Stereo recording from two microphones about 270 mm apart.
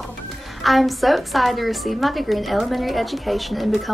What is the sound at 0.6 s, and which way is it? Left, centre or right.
A woman's voice, centre.